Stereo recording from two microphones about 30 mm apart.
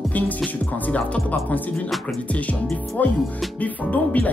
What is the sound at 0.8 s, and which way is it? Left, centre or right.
Music, left.